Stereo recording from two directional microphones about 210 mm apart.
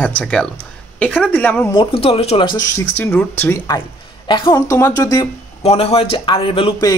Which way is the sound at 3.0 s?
10° left (ahead or behind).